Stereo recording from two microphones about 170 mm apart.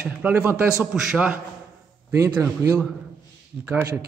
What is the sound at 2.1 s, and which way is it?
A man's voice, 20° right (ahead or behind).